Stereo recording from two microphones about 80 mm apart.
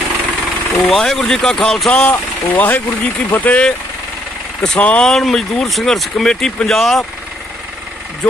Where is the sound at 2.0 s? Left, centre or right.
Left; by 7.1 s centre.